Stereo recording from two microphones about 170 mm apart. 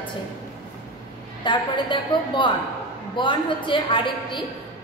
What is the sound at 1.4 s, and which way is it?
A woman's voice, 25° left (ahead or behind).